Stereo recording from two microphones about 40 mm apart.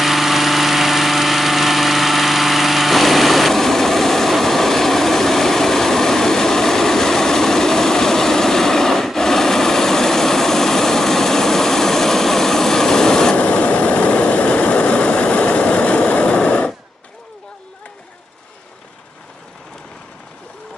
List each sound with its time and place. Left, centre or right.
0.0 s vehicle: centre
13.4 s vehicle: left